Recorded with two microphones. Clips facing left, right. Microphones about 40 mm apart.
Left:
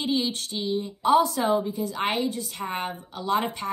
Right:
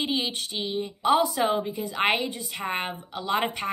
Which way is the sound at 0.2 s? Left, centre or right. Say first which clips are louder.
Left 1 dB; right.